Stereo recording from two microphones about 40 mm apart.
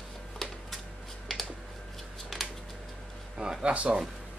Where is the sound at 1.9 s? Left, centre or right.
Centre.